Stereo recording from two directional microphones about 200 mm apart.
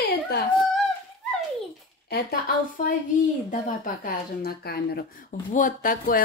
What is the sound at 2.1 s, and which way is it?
A woman's voice, 45° left (ahead or behind).